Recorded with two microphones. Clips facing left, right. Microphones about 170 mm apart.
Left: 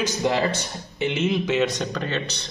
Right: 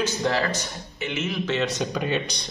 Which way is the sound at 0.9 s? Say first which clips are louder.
Left 6 dB; 30° left (ahead or behind).